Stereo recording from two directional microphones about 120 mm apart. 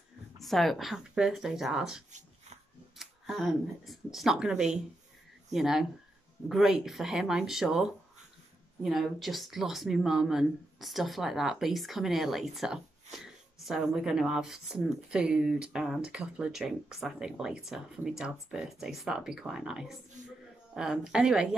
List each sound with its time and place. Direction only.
0.4 s speech: centre (ahead or behind)
20.2 s a sound: 90° right
20.7 s speech: 5° right (ahead or behind)